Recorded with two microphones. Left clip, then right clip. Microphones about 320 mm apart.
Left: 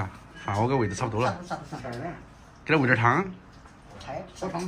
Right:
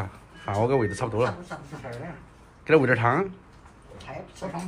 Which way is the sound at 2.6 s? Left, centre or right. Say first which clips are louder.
Right 2 dB; centre.